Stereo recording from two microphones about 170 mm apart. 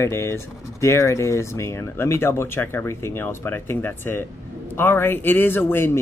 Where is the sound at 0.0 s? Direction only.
15° left (ahead or behind).